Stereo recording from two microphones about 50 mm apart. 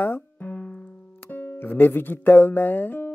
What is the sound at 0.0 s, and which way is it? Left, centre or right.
Music, left.